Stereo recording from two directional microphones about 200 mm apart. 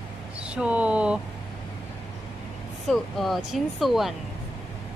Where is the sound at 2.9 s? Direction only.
Centre (ahead or behind).